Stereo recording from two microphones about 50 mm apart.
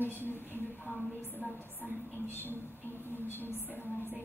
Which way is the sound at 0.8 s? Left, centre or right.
Centre.